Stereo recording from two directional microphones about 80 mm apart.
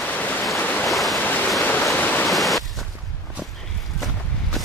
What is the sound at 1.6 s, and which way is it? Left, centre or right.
Waterfall, left.